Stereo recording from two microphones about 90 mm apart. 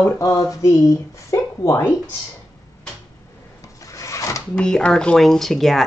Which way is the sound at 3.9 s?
35° left (ahead or behind).